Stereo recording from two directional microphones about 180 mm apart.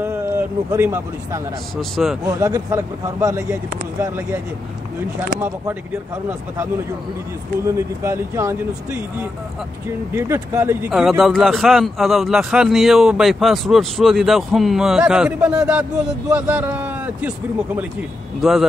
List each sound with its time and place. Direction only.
0.0 s speech: 10° right (ahead or behind)
1.8 s a man's voice: centre (ahead or behind)
2.3 s speech: 15° right (ahead or behind)
7.6 s speech: 15° right (ahead or behind)
10.1 s speech: 15° right (ahead or behind)
10.9 s a man's voice: 5° right (ahead or behind)
18.4 s a man's voice: centre (ahead or behind)